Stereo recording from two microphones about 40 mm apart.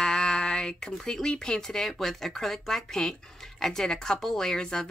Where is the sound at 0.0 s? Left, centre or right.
Centre.